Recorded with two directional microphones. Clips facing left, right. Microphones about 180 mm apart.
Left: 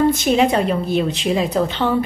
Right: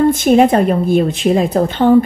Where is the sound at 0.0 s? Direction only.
50° right (ahead or behind).